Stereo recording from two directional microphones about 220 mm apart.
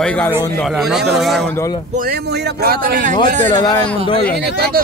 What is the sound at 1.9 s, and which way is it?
Speech, 40° right (ahead or behind).